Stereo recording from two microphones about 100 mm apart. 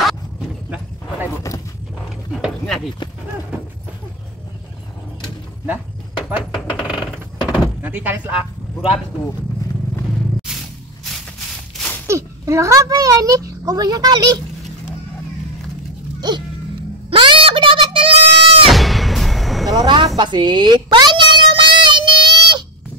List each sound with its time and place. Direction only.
5.7 s a sound: 15° right (ahead or behind)
7.8 s speech: 15° right (ahead or behind)
12.1 s a child's voice: 30° right (ahead or behind)
16.2 s music: 45° right (ahead or behind)
17.1 s goat: 60° right (ahead or behind)
18.7 s artillery fire: centre (ahead or behind)
19.7 s vehicle: 45° right (ahead or behind)
20.2 s child singing: 50° right (ahead or behind)